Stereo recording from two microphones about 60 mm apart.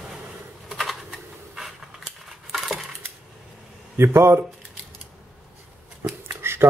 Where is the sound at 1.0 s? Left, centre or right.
Centre.